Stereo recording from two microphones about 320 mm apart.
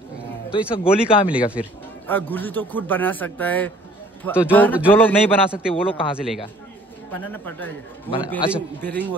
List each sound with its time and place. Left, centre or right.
0.5 s speech: centre
1.3 s a man's voice: centre
5.8 s speech: centre
6.1 s a man's voice: centre